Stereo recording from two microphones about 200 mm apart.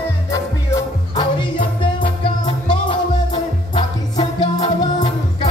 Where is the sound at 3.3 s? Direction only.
25° left (ahead or behind).